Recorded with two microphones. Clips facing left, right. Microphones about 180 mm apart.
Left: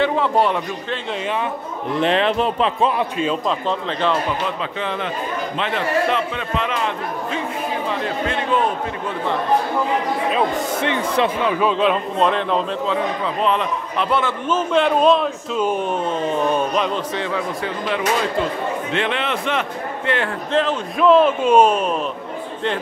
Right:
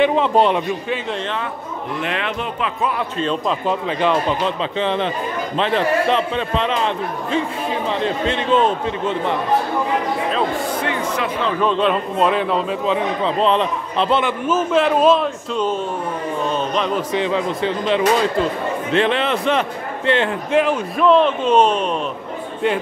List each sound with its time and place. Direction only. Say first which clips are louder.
0.0 s a man's voice: right 3 dB; 20° right (ahead or behind)
2.0 s a man's voice: left 8 dB; 30° left (ahead or behind)
3.0 s speech: left 1 dB; 10° left (ahead or behind)
3.4 s speech: right 1 dB; 10° right (ahead or behind)
4.7 s a man's voice: right 4 dB; 25° right (ahead or behind)
8.0 s a man's voice: right 2 dB; 25° right (ahead or behind)
10.3 s speech: even; 20° left (ahead or behind)
11.4 s speech: even; 5° left (ahead or behind)
12.8 s a man's voice: right 2 dB; 20° right (ahead or behind)
13.4 s a man's voice: right 2 dB; 30° right (ahead or behind)
14.5 s speech: right 1 dB; 5° right (ahead or behind); by 16.6 s 15° left (ahead or behind)
16.9 s a man's voice: right 4 dB; 15° right (ahead or behind)
20.5 s speech: right 2 dB; 10° right (ahead or behind)
21.0 s speech: left 1 dB; 5° left (ahead or behind)